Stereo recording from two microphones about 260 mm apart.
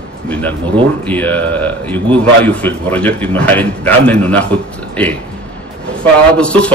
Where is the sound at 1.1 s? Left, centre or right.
Centre.